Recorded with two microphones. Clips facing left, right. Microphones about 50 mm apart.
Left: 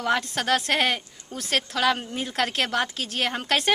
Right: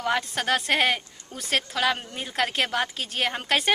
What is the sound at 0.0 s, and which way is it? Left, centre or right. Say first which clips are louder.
A woman's voice: left 1 dB; centre.